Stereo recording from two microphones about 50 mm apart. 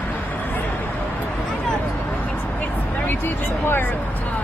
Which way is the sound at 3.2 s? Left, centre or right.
Left.